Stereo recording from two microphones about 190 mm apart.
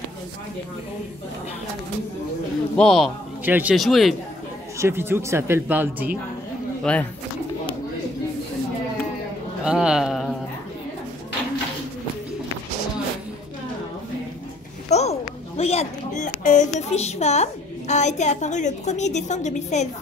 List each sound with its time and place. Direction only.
2.8 s speech: centre (ahead or behind)
4.7 s speech: 15° right (ahead or behind)
6.8 s speech: 5° left (ahead or behind)
9.7 s speech: 5° right (ahead or behind)
14.9 s a child's voice: 35° left (ahead or behind)